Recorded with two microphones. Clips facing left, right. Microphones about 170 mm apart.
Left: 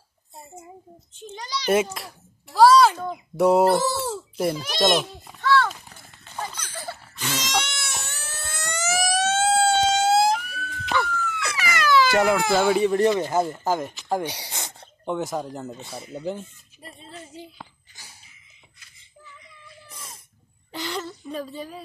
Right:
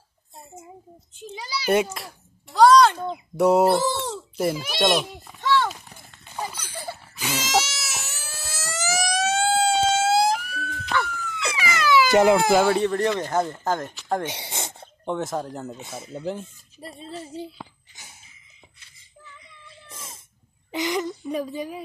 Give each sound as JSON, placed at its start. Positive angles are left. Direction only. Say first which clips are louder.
{"t": 1.2, "sound": "a child's voice", "louder": "even", "side_deg": -5}
{"t": 5.4, "sound": "a sound", "louder": "left 1 dB", "side_deg": -20}
{"t": 5.7, "sound": "run", "louder": "right 1 dB", "side_deg": 0}
{"t": 6.2, "sound": "goat", "louder": "right 1 dB", "side_deg": -10}
{"t": 11.1, "sound": "a sound", "louder": "left 4 dB", "side_deg": -15}
{"t": 12.1, "sound": "speech", "louder": "right 4 dB", "side_deg": -25}
{"t": 12.6, "sound": "speech", "louder": "left 2 dB", "side_deg": 10}
{"t": 14.2, "sound": "a sound", "louder": "right 1 dB", "side_deg": -25}
{"t": 15.0, "sound": "a child's voice", "louder": "even", "side_deg": 0}
{"t": 15.8, "sound": "speech", "louder": "even", "side_deg": -20}
{"t": 16.1, "sound": "a child's voice", "louder": "even", "side_deg": 0}
{"t": 17.1, "sound": "speech", "louder": "right 6 dB", "side_deg": -35}
{"t": 20.7, "sound": "a woman's voice", "louder": "right 6 dB", "side_deg": -15}